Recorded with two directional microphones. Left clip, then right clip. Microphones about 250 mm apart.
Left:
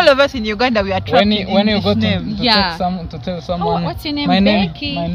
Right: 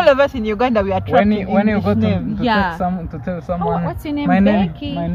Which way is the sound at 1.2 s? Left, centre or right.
Left.